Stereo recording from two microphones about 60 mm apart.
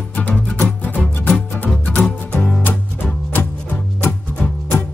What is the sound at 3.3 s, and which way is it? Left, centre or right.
Music, left.